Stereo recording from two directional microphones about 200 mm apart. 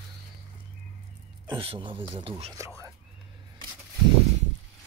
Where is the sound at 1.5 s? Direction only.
25° right (ahead or behind).